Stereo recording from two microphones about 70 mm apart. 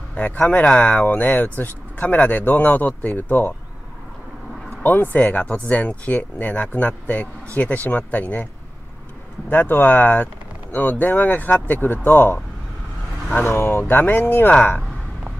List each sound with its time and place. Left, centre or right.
0.1 s speech: centre
4.8 s speech: left
9.5 s speech: left
13.5 s speech: left